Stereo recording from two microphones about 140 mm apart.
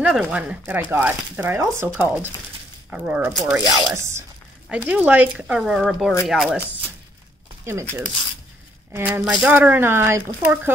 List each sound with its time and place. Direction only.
0.0 s speech: 5° right (ahead or behind)
3.9 s speech: 20° right (ahead or behind)
4.6 s speech: 10° right (ahead or behind)
8.9 s speech: 15° right (ahead or behind)